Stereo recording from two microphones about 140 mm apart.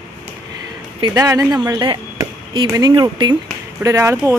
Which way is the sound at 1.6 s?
30° right (ahead or behind).